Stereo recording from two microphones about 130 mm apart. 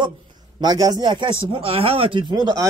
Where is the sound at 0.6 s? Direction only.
30° right (ahead or behind).